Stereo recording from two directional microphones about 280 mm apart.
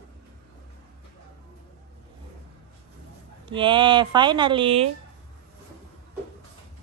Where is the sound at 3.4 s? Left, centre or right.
Centre.